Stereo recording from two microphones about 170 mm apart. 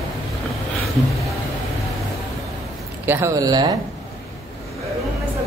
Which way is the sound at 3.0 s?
15° right (ahead or behind).